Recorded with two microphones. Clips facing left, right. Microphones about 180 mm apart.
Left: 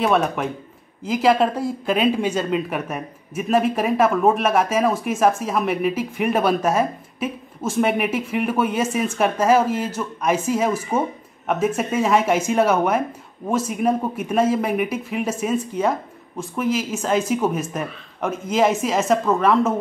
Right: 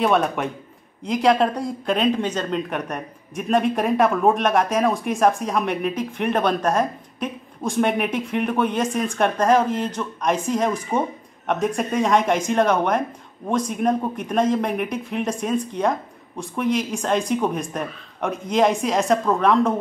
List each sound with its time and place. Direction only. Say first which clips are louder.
0.0 s speech: even; centre (ahead or behind)